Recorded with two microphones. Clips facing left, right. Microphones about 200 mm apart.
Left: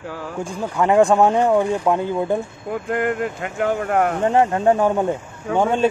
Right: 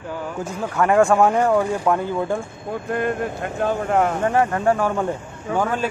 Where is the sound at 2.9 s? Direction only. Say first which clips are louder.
Left 1 dB; 90° left.